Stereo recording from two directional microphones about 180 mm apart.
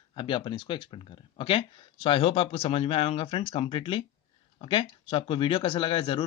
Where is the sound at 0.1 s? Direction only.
30° left (ahead or behind).